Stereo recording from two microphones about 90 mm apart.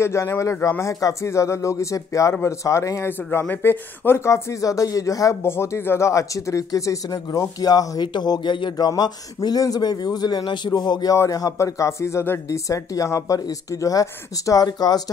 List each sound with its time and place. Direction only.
0.0 s speech: 30° left (ahead or behind)
3.1 s speech: 25° left (ahead or behind); by 15.0 s 45° left (ahead or behind)